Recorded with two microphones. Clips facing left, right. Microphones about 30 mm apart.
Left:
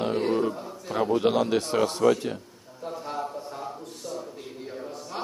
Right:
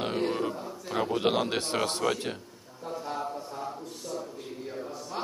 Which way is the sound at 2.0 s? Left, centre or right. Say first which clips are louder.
Left 7 dB; right.